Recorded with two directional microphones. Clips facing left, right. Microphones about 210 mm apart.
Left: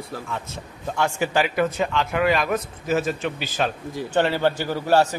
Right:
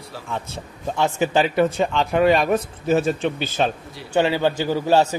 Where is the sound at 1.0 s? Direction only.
20° right (ahead or behind).